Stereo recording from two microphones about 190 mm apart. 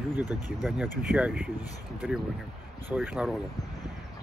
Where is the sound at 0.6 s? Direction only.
5° right (ahead or behind).